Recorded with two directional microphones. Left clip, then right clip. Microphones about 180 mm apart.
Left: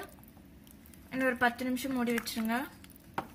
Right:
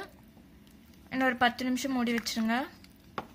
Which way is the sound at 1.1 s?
60° right (ahead or behind).